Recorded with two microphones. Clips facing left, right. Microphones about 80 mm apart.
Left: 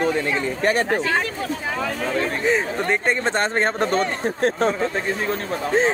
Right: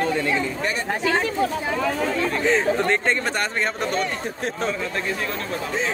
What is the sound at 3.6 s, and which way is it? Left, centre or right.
Speech, left.